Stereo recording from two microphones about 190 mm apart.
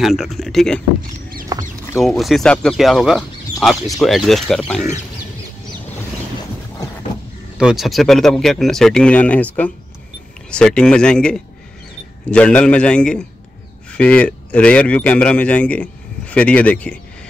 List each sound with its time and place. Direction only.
0.0 s speech: centre (ahead or behind)
1.5 s rodents: 20° right (ahead or behind)
2.0 s speech: centre (ahead or behind)
7.5 s a man's voice: centre (ahead or behind)